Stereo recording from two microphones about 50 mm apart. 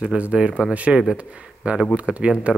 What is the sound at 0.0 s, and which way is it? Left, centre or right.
Speech, right.